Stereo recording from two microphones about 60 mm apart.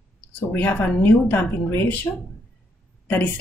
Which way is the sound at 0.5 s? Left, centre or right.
Left.